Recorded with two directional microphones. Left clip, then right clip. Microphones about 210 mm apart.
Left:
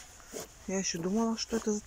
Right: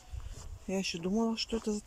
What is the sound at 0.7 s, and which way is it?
Speech, 10° right (ahead or behind).